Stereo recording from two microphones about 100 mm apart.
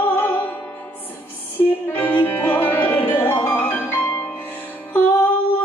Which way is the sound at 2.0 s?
20° left (ahead or behind).